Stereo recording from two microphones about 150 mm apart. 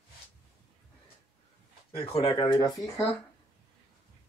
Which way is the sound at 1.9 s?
35° left (ahead or behind).